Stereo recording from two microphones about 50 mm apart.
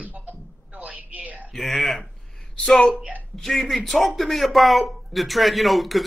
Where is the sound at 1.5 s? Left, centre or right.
Centre.